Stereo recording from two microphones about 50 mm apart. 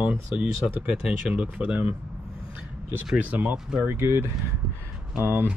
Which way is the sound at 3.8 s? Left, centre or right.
Right.